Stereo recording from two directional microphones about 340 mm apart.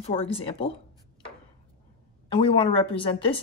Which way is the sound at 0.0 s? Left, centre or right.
Centre.